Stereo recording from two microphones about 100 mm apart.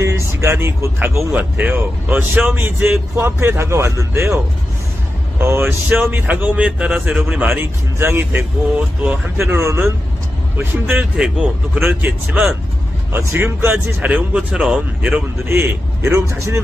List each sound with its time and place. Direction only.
0.0 s speech: 30° right (ahead or behind)
5.4 s speech: 25° right (ahead or behind)
7.4 s speech: 20° right (ahead or behind)
9.4 s speech: 25° right (ahead or behind)
11.1 s speech: 10° right (ahead or behind)
13.1 s speech: 25° right (ahead or behind)